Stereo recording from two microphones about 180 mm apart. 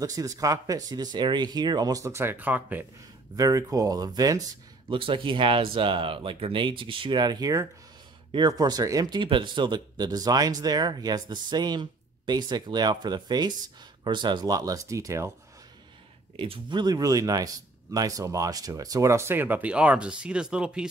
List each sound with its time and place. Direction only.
0.0 s speech: 20° right (ahead or behind)
16.3 s speech: 25° right (ahead or behind); by 20.9 s 5° right (ahead or behind)